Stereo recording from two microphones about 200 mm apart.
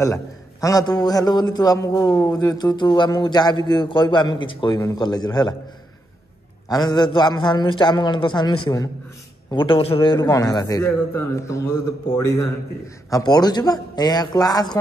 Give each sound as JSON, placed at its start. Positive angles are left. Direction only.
{"t": 0.0, "sound": "a man's voice", "side_deg": 15}
{"t": 6.7, "sound": "a man's voice", "side_deg": 20}
{"t": 13.1, "sound": "a man's voice", "side_deg": 20}